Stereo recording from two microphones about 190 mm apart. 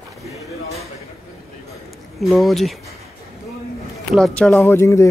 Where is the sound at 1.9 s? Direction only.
Centre (ahead or behind).